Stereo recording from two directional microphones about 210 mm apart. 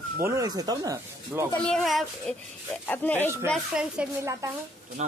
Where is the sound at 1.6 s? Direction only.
Centre (ahead or behind).